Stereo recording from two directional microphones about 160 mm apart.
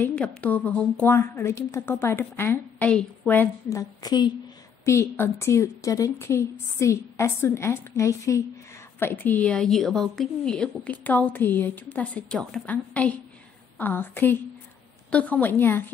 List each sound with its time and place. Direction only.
0.0 s a woman's voice: 10° left (ahead or behind)
4.0 s a woman's voice: 25° left (ahead or behind)
4.8 s a woman's voice: 15° left (ahead or behind)